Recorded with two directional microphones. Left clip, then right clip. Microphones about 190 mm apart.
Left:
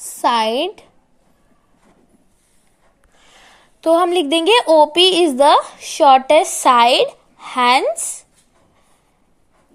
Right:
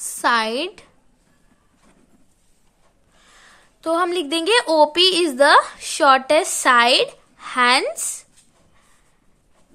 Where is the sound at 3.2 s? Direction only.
15° left (ahead or behind).